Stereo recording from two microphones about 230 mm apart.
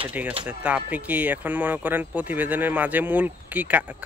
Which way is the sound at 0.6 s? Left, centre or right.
Centre.